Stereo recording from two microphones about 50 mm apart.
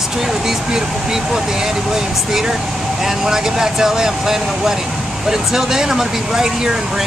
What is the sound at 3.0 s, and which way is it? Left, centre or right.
Speech, centre.